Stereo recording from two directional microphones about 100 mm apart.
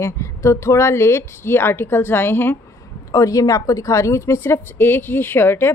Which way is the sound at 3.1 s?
35° left (ahead or behind).